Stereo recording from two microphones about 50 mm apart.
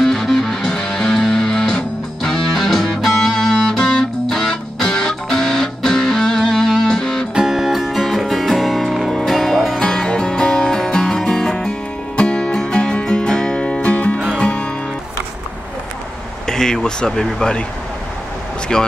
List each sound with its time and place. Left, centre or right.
0.0 s music: centre
7.3 s music: centre; by 14.7 s left
16.4 s a sound: centre
18.7 s speech: centre